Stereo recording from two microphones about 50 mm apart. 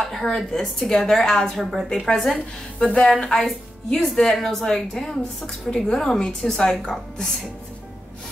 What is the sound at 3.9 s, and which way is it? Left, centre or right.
A woman's voice, centre.